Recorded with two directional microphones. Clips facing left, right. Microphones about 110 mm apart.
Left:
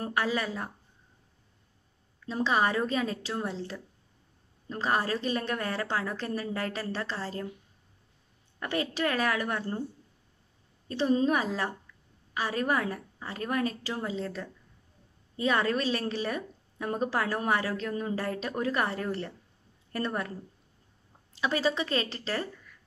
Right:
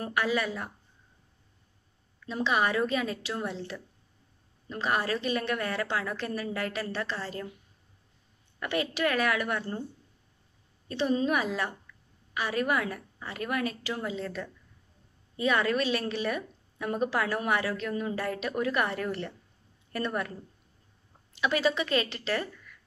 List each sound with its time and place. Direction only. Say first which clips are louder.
0.0 s a woman's voice: right 1 dB; 35° left (ahead or behind)
2.2 s a woman's voice: left 1 dB; 35° left (ahead or behind)
8.5 s a woman's voice: right 1 dB; 35° left (ahead or behind)
10.9 s a woman's voice: left 1 dB; 35° left (ahead or behind)
21.4 s a woman's voice: right 1 dB; 30° left (ahead or behind)